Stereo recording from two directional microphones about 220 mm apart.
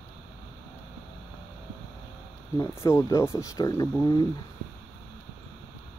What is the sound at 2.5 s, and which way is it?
Speech, 15° left (ahead or behind).